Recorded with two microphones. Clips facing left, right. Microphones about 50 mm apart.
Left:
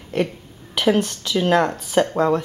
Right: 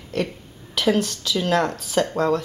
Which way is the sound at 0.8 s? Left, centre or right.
Left.